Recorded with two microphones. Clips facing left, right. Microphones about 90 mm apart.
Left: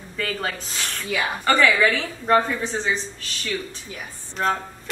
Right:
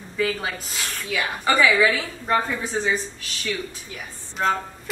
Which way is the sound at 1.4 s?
10° right (ahead or behind).